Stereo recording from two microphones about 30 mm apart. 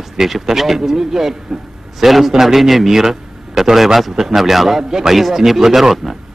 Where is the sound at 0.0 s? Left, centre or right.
Centre.